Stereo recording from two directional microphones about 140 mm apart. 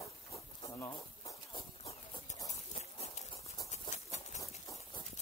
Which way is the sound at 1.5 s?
45° left (ahead or behind).